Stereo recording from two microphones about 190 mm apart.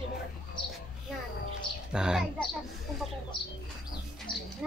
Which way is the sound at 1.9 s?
5° right (ahead or behind).